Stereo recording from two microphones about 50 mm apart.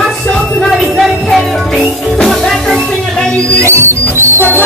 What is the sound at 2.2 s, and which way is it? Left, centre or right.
Music, centre.